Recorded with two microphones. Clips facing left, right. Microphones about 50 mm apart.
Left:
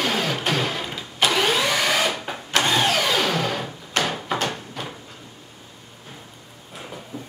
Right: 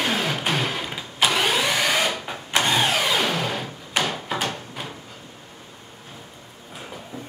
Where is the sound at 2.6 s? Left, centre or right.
Centre.